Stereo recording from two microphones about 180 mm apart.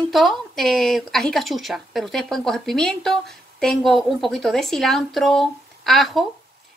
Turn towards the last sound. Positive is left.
turn(degrees=0)  # may be behind; listen again after turning